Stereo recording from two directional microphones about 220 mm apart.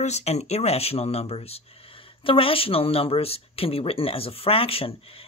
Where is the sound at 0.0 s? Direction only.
30° left (ahead or behind).